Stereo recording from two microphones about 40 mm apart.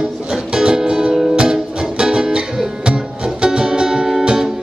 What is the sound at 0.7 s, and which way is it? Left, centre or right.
Music, centre.